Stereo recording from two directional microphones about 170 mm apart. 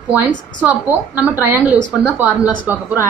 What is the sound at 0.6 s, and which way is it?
A woman's voice, 10° right (ahead or behind).